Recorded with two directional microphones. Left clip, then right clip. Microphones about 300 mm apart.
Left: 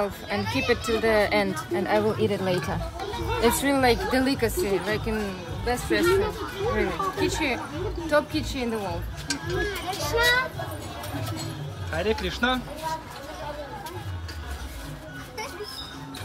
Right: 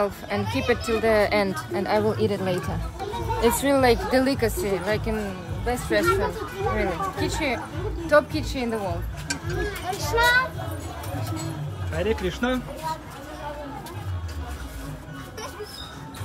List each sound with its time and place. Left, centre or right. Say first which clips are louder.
0.0 s speech: right 2 dB; centre
9.8 s speech: right 3 dB; centre
11.9 s speech: right 1 dB; centre